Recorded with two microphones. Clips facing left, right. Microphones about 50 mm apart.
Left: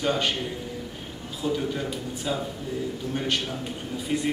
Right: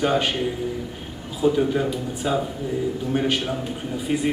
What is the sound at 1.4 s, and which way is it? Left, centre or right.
A man's voice, centre.